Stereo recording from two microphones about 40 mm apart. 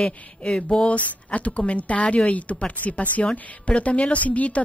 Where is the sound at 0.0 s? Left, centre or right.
Left.